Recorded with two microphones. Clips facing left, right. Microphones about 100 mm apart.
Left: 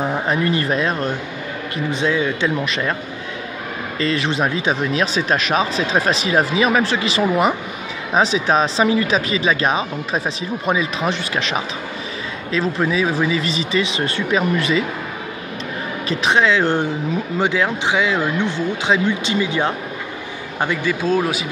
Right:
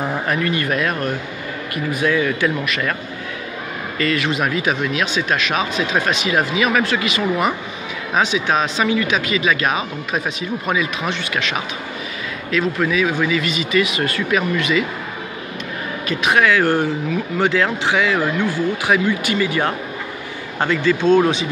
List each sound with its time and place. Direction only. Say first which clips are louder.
0.0 s a sound: left 1 dB; 20° left (ahead or behind)
0.4 s speech: left 1 dB; 30° left (ahead or behind)
4.0 s speech: even; 30° left (ahead or behind)
16.1 s speech: even; 30° left (ahead or behind); by 21.5 s 5° left (ahead or behind)